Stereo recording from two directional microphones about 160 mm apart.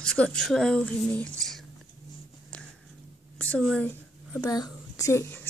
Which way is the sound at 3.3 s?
5° left (ahead or behind).